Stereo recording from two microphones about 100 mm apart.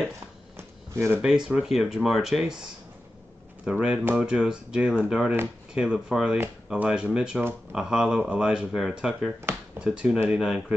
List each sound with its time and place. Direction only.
0.6 s a sound: 25° right (ahead or behind)
1.2 s speech: 5° right (ahead or behind)
3.7 s speech: 10° right (ahead or behind)